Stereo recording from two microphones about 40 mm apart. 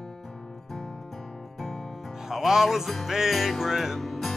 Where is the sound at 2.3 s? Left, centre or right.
Centre.